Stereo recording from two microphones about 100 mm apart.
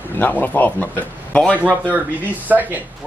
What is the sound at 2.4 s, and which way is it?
Speech, 15° right (ahead or behind).